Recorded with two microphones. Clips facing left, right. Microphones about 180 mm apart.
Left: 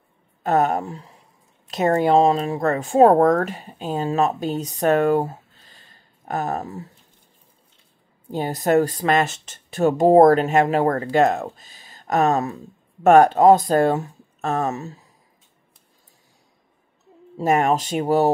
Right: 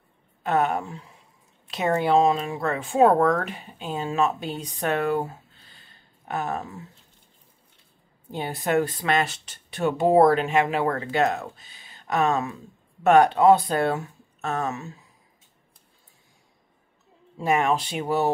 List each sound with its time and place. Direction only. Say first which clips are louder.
0.4 s speech: left 4 dB; 40° left (ahead or behind)
8.3 s speech: left 6 dB; 40° left (ahead or behind)
17.4 s speech: left 4 dB; 45° left (ahead or behind)